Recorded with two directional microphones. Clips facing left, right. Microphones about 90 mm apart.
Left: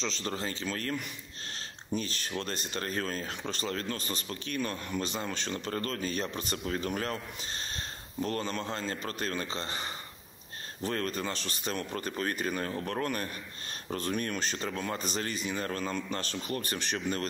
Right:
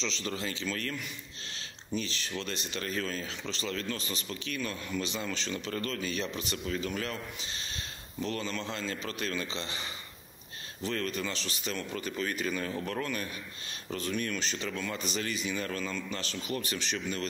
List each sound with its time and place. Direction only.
0.0 s speech: 40° left (ahead or behind)